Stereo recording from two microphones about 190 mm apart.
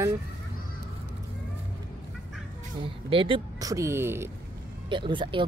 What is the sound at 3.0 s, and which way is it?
Speech, 25° right (ahead or behind).